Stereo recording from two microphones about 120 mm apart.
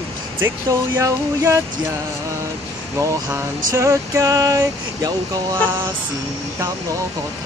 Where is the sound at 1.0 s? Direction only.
25° right (ahead or behind).